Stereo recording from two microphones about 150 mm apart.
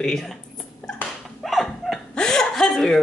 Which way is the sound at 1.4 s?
Centre (ahead or behind).